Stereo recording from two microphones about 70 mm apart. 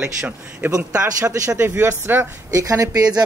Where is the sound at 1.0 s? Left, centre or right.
Right.